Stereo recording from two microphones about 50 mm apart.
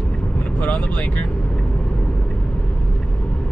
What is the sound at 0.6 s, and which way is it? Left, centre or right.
Speech, left.